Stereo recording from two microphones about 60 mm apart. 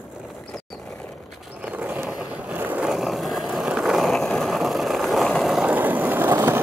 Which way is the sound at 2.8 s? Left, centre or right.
Centre.